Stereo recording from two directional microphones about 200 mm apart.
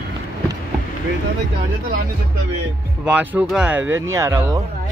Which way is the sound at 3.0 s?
5° right (ahead or behind).